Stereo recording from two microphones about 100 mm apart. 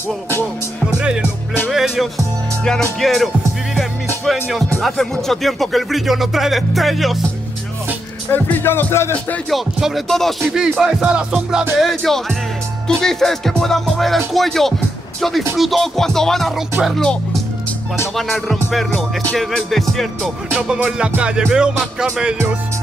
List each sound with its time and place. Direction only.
0.8 s speech: 10° right (ahead or behind)
3.7 s music: centre (ahead or behind)
4.8 s speech: 5° left (ahead or behind)
8.3 s music: 20° left (ahead or behind)
9.5 s speech: centre (ahead or behind)
10.8 s music: 10° right (ahead or behind)
11.8 s speech: centre (ahead or behind)
20.4 s music: 10° right (ahead or behind)